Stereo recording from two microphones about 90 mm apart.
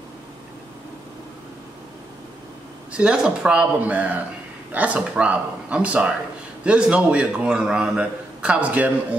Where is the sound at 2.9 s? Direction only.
10° right (ahead or behind).